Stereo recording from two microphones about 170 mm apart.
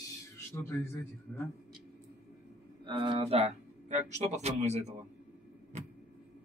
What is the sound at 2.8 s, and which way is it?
Speech, 25° right (ahead or behind).